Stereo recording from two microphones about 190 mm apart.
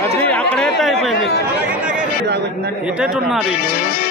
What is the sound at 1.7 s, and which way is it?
Chatter, 5° right (ahead or behind).